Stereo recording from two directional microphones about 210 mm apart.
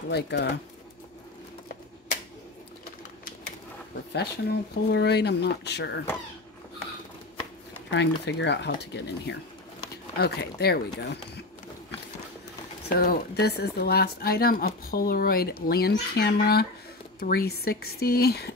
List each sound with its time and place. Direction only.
0.1 s speech: 55° left (ahead or behind)
4.1 s speech: 50° left (ahead or behind)
7.9 s speech: 55° left (ahead or behind)
12.9 s speech: 45° left (ahead or behind)